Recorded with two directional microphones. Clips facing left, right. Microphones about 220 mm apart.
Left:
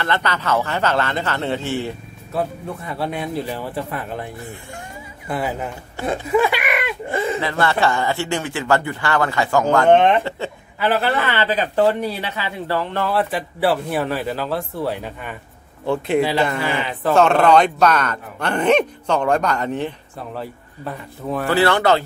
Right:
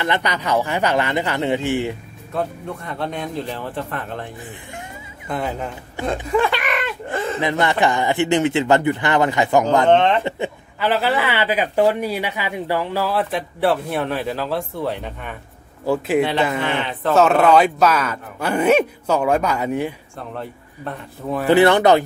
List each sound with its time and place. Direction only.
0.0 s speech: 15° right (ahead or behind)
2.3 s a man's voice: 5° left (ahead or behind)
5.3 s speech: 5° left (ahead or behind)
7.3 s a man's voice: 20° right (ahead or behind)
9.8 s a man's voice: 10° left (ahead or behind)
10.8 s speech: centre (ahead or behind)
11.1 s speech: 10° right (ahead or behind)
20.2 s speech: 5° left (ahead or behind)
21.5 s a man's voice: 20° right (ahead or behind)